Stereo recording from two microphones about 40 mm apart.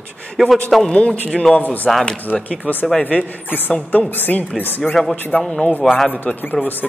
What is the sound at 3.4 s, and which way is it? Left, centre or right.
Speech, left.